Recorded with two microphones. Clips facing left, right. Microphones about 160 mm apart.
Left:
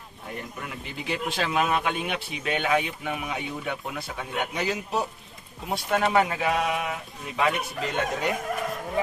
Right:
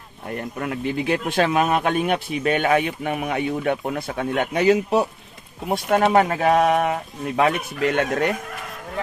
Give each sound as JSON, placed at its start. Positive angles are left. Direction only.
{"t": 0.6, "sound": "speech", "side_deg": -60}
{"t": 7.8, "sound": "speech", "side_deg": -70}